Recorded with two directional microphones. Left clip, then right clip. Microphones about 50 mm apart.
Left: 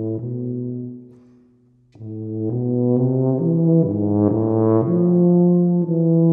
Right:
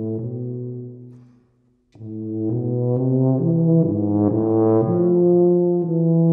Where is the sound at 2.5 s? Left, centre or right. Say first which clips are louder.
Left 4 dB; centre.